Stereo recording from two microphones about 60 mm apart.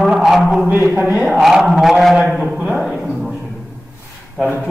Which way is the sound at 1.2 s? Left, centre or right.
Centre.